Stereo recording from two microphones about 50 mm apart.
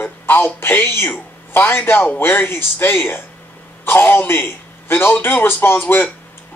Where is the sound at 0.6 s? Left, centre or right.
Left.